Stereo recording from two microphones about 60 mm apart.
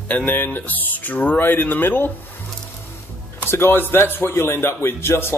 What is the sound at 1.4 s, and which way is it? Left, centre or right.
Speech, left.